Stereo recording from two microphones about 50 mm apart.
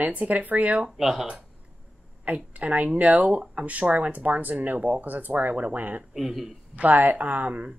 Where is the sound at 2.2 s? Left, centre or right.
Right.